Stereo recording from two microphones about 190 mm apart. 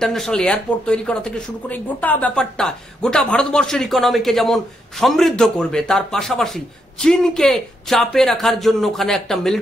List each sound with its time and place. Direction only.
0.0 s a man's voice: centre (ahead or behind)